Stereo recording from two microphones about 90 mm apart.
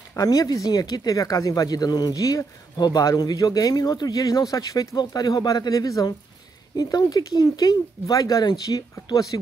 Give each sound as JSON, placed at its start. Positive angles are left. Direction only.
{"t": 0.1, "sound": "speech", "side_deg": 40}